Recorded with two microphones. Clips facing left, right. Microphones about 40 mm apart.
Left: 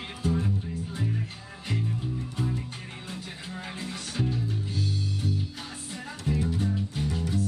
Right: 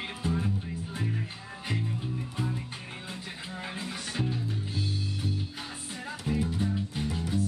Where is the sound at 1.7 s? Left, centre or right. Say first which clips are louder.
Left 2 dB; centre.